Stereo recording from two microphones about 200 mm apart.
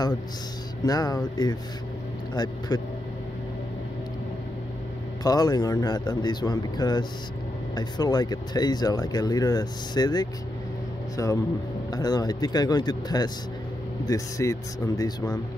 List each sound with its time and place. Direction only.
0.8 s speech: 20° left (ahead or behind)
5.2 s speech: 20° left (ahead or behind)